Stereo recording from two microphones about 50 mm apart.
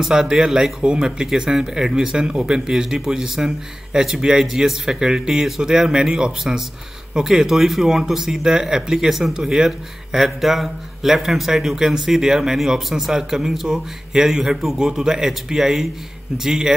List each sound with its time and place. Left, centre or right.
0.0 s speech: centre